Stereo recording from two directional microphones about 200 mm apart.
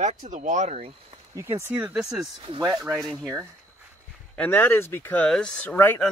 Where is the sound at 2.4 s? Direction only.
20° right (ahead or behind).